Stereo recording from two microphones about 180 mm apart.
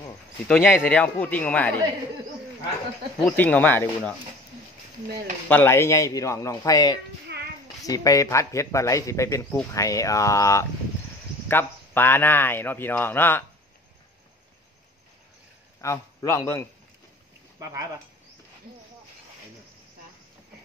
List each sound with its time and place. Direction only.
0.5 s a man's voice: 5° left (ahead or behind)
3.3 s a man's voice: 10° left (ahead or behind)
5.5 s a man's voice: 10° left (ahead or behind)
7.3 s a sound: 65° right (ahead or behind)
7.8 s a man's voice: 20° left (ahead or behind)
15.8 s a man's voice: 15° left (ahead or behind)
17.6 s speech: 20° right (ahead or behind)